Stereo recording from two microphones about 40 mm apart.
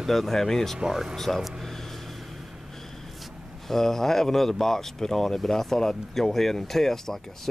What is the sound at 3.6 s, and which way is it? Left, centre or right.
Speech, centre.